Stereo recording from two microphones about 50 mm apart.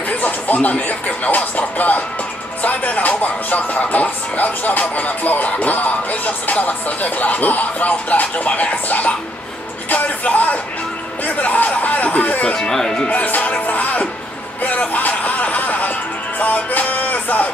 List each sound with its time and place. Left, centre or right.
0.2 s speech: left
12.5 s speech: centre
13.1 s speech: left
16.3 s music: left